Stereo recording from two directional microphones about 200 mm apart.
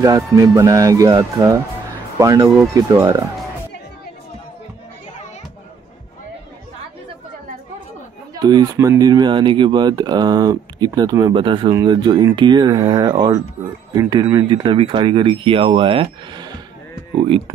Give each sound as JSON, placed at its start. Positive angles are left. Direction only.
{"t": 0.0, "sound": "speech", "side_deg": -15}
{"t": 8.4, "sound": "speech", "side_deg": -20}